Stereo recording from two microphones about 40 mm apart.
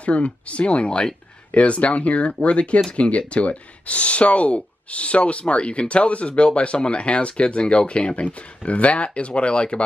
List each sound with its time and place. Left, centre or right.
0.0 s speech: left